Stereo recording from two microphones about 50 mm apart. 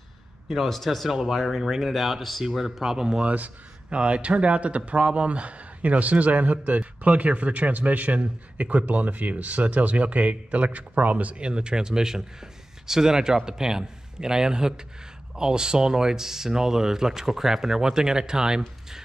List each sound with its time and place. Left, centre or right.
0.5 s speech: centre
3.3 s speech: right